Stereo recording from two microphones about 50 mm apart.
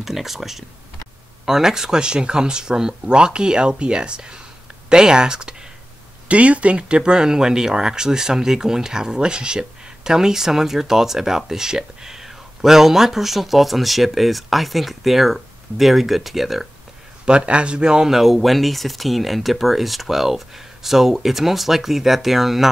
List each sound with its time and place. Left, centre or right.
0.0 s speech: centre
6.2 s speech: right; by 16.6 s centre
17.2 s speech: right; by 22.7 s centre